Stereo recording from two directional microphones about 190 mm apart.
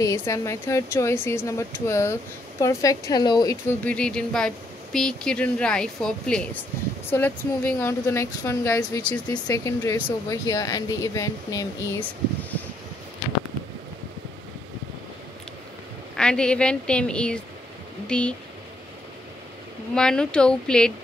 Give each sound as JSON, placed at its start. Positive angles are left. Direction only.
{"t": 0.0, "sound": "speech", "side_deg": 15}
{"t": 3.8, "sound": "speech", "side_deg": 5}
{"t": 16.2, "sound": "speech", "side_deg": 5}
{"t": 19.9, "sound": "speech", "side_deg": 5}